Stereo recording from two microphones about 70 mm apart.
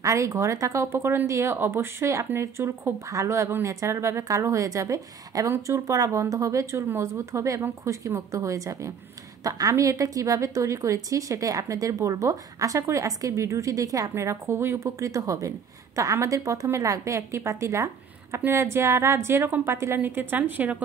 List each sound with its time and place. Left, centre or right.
0.0 s a woman's voice: right